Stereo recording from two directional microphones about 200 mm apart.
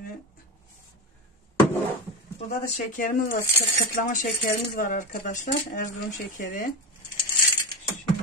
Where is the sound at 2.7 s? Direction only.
40° left (ahead or behind).